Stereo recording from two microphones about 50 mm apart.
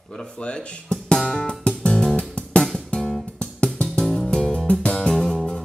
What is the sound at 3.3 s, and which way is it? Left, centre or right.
Music, left.